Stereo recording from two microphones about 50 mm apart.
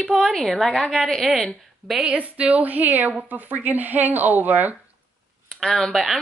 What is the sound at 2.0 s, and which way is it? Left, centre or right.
A woman's voice, right.